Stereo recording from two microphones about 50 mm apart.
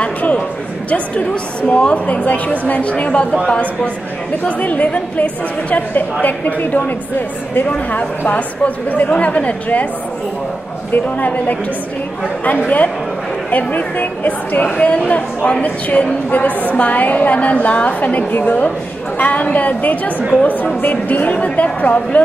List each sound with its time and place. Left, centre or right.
0.0 s a sound: left
0.8 s a woman's voice: left
8.3 s a woman's voice: left
10.9 s a woman's voice: left